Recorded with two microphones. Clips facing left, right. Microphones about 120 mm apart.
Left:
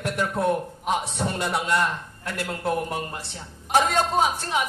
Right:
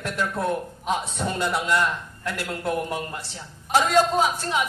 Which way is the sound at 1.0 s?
60° left (ahead or behind).